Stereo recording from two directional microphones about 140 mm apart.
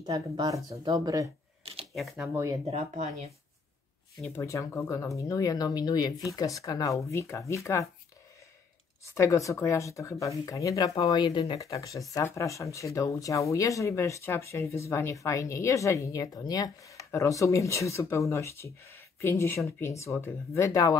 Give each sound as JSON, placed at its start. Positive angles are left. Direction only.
{"t": 0.0, "sound": "speech", "side_deg": -25}
{"t": 2.0, "sound": "speech", "side_deg": 0}
{"t": 2.2, "sound": "speech", "side_deg": -15}
{"t": 2.6, "sound": "speech", "side_deg": -50}
{"t": 4.4, "sound": "speech", "side_deg": 20}
{"t": 9.0, "sound": "speech", "side_deg": 20}